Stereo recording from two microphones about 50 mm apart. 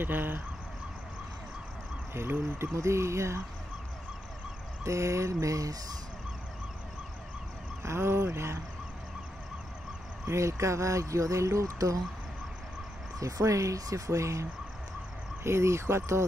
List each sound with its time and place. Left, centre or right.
0.0 s speech: right
2.1 s speech: right
2.7 s speech: right
4.8 s speech: right
7.8 s speech: right
10.2 s speech: right
13.2 s speech: right
15.4 s speech: right